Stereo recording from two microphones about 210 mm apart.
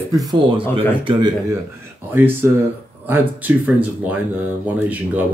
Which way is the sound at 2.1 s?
10° right (ahead or behind).